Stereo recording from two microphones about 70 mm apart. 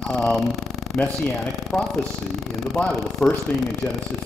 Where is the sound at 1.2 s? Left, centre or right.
Centre.